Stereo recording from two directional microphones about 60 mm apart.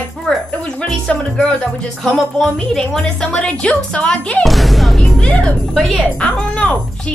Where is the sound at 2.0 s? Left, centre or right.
Centre; by 4.4 s left.